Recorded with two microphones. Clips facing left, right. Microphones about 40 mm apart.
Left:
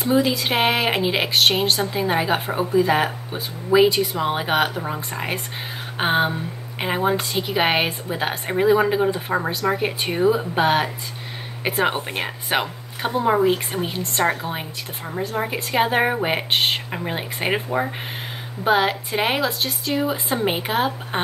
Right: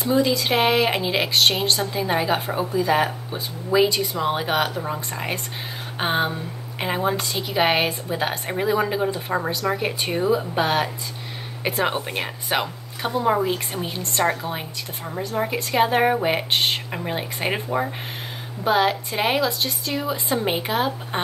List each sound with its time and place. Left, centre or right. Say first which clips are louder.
0.0 s speech: left 1 dB; centre
18.6 s speech: left 1 dB; centre